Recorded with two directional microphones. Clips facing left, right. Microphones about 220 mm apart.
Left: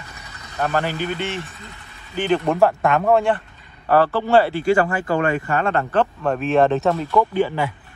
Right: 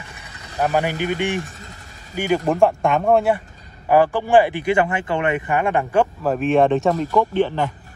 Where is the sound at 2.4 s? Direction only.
Centre (ahead or behind).